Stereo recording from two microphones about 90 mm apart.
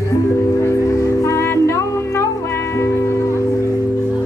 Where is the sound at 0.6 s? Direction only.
35° left (ahead or behind).